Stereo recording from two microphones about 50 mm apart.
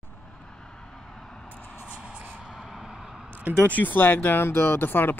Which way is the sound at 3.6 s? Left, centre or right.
Left.